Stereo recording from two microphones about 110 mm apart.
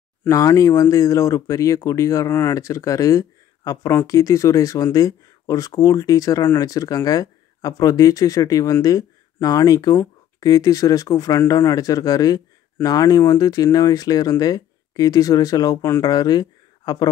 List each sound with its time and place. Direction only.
0.3 s speech: 30° left (ahead or behind)